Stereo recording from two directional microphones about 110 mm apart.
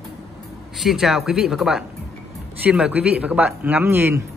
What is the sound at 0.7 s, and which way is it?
A man's voice, centre (ahead or behind).